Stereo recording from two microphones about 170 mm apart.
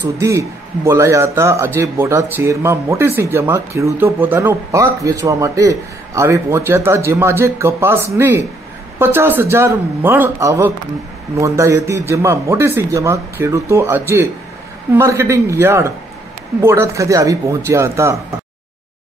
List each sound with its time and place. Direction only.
0.0 s a man's voice: 15° right (ahead or behind)